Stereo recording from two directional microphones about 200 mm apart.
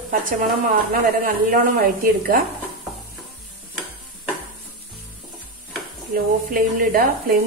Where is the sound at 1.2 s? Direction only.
45° right (ahead or behind).